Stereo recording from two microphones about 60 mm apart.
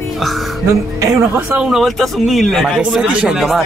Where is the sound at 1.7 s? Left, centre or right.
Centre.